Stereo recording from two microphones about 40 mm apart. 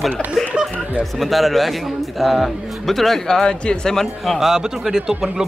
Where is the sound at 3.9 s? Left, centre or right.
Centre.